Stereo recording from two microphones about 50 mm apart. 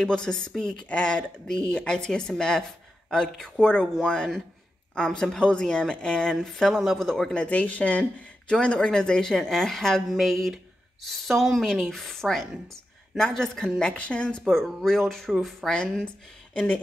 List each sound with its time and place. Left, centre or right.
0.0 s speech: centre
6.3 s speech: centre
7.3 s a woman's voice: left; by 11.6 s centre
11.6 s speech: centre
13.8 s speech: left
14.4 s speech: centre; by 16.8 s left